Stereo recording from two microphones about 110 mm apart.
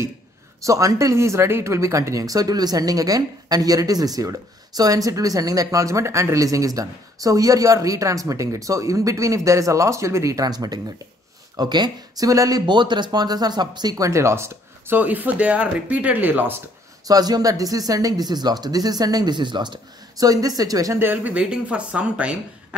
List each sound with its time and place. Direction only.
0.6 s speech: 30° right (ahead or behind)
17.1 s speech: 35° right (ahead or behind)
21.0 s speech: 15° right (ahead or behind)